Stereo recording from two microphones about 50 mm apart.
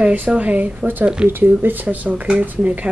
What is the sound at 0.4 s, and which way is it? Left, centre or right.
Speech, right.